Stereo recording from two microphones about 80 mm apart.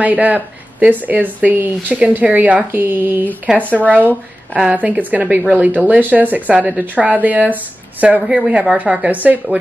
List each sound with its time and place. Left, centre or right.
0.0 s speech: centre
3.8 s speech: centre
4.6 s speech: centre